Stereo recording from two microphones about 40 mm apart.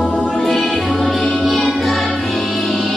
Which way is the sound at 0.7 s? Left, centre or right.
Centre.